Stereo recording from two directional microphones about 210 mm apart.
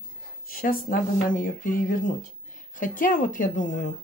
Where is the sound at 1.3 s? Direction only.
40° left (ahead or behind).